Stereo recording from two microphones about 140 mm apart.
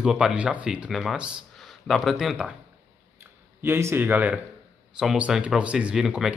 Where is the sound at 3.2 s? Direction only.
15° right (ahead or behind).